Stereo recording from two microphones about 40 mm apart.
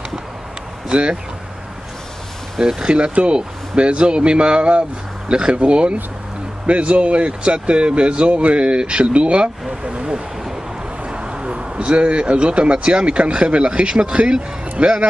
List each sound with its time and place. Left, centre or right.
0.8 s speech: right
2.6 s a man's voice: centre